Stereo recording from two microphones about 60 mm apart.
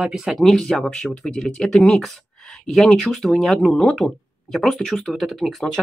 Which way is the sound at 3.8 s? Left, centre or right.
Centre.